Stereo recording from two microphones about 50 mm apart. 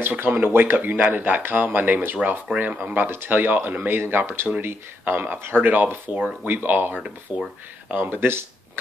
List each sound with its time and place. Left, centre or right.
0.2 s speech: right
3.1 s speech: right
7.3 s speech: centre
7.9 s speech: right